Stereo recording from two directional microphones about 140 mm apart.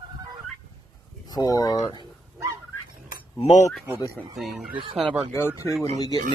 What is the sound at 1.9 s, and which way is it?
Dog, 25° right (ahead or behind).